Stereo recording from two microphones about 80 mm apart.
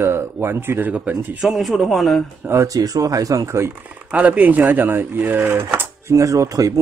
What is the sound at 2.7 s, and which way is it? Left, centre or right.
Speech, right.